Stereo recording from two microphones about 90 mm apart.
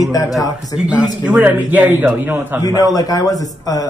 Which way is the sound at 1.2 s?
15° right (ahead or behind).